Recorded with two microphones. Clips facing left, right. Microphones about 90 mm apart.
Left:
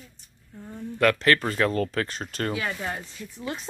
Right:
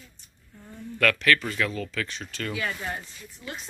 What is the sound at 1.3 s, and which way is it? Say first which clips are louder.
Speech: left 5 dB; 40° left (ahead or behind).